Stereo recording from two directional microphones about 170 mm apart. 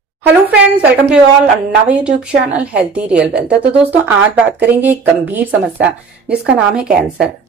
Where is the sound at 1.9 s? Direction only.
10° right (ahead or behind).